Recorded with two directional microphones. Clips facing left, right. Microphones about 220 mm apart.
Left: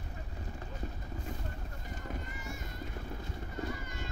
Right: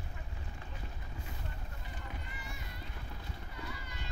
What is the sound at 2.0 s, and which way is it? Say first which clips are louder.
Run: left 6 dB; 45° left (ahead or behind).